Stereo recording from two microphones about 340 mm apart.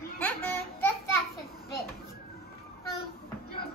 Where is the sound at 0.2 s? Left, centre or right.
Centre.